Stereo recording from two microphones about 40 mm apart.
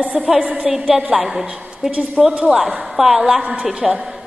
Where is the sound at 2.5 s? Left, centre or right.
Right.